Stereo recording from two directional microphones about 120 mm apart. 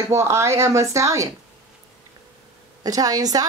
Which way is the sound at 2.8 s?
30° right (ahead or behind).